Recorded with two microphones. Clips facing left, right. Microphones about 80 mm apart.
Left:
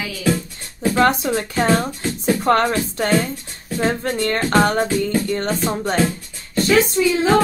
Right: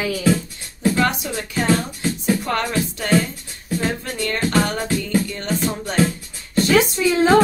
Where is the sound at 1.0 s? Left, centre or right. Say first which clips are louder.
Left 4 dB; left.